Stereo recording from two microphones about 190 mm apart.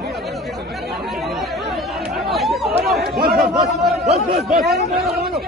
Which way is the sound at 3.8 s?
Centre (ahead or behind).